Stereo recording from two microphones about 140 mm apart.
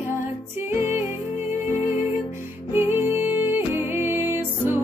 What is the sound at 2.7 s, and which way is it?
Music, 15° right (ahead or behind).